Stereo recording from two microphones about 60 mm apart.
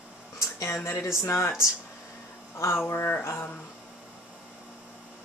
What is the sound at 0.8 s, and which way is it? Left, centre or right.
Speech, left.